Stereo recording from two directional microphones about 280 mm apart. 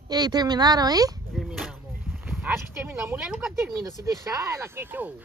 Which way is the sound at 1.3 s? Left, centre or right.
Centre.